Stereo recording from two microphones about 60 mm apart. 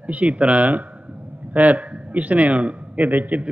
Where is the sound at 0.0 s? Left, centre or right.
Right.